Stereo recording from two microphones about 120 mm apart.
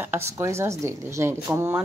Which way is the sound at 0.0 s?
20° right (ahead or behind).